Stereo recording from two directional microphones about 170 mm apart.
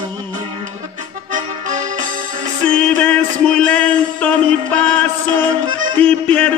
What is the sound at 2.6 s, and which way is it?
Music, 5° left (ahead or behind).